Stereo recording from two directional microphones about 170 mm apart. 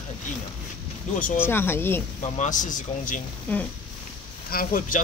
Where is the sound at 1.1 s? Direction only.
50° left (ahead or behind).